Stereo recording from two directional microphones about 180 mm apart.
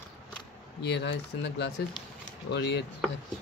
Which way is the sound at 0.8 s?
75° left (ahead or behind).